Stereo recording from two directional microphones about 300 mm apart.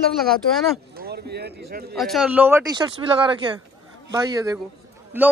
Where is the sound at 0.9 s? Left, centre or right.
Right.